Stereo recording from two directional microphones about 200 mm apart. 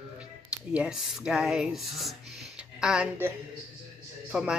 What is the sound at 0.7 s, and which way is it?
A woman's voice, 5° right (ahead or behind).